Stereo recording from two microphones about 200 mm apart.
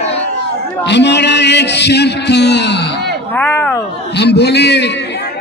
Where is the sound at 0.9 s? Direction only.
60° left (ahead or behind).